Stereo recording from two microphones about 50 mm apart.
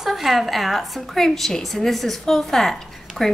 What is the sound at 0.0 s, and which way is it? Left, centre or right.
A woman's voice, centre.